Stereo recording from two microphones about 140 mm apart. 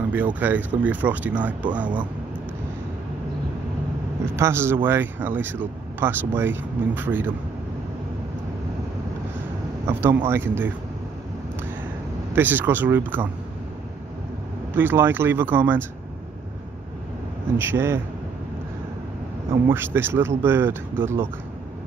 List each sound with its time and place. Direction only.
0.1 s speech: 10° right (ahead or behind)
4.4 s speech: 20° right (ahead or behind)
9.8 s speech: 15° right (ahead or behind)
12.4 s speech: 15° right (ahead or behind)
14.8 s speech: 15° right (ahead or behind)
17.6 s speech: 15° right (ahead or behind)
19.5 s speech: 15° right (ahead or behind)